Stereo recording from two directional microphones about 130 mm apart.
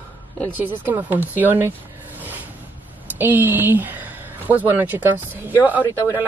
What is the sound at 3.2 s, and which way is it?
Speech, 15° right (ahead or behind).